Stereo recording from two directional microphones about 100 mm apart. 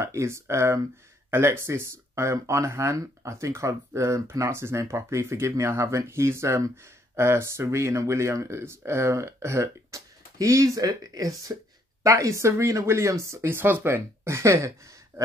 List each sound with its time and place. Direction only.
0.0 s speech: 30° right (ahead or behind)
15.1 s gasp: 25° right (ahead or behind)